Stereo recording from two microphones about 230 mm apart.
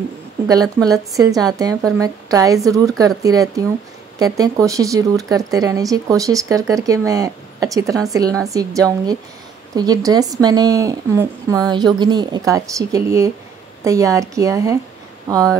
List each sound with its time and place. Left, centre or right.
0.8 s speech: centre